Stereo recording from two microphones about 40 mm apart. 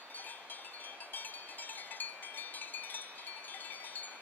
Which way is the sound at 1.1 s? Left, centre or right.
Left.